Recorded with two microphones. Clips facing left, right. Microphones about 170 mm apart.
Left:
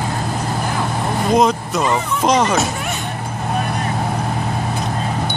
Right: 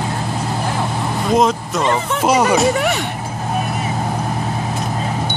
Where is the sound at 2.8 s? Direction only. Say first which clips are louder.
Right 7 dB; 70° right (ahead or behind).